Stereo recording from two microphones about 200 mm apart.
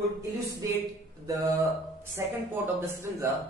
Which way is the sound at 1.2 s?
15° right (ahead or behind).